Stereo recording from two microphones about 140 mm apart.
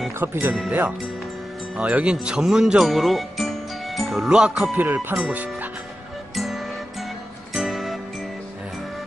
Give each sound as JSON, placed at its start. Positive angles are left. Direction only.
{"t": 0.2, "sound": "speech", "side_deg": -15}
{"t": 6.3, "sound": "music", "side_deg": 0}